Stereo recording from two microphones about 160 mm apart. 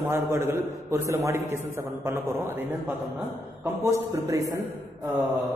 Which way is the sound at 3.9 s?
20° right (ahead or behind).